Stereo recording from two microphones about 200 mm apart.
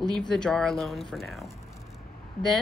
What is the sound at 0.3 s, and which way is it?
Speech, 5° left (ahead or behind).